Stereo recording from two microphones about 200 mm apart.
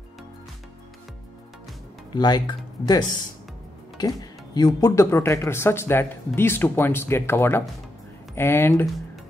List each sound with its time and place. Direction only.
2.1 s speech: 20° left (ahead or behind)